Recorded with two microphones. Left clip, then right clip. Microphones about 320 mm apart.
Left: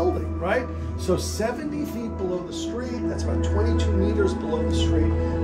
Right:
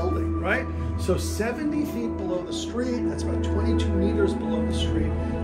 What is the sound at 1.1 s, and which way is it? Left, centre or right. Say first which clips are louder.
Music: left 2 dB; left.